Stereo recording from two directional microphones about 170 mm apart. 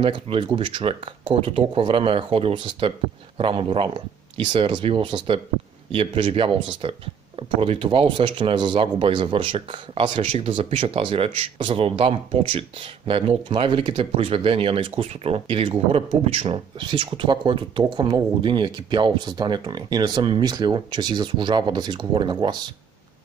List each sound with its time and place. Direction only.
0.0 s speech: 30° right (ahead or behind)